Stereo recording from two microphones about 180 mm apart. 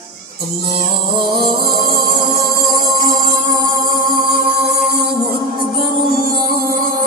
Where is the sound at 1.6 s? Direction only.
55° right (ahead or behind).